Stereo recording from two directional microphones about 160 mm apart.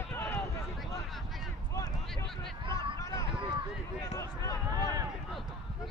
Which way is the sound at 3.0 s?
20° left (ahead or behind).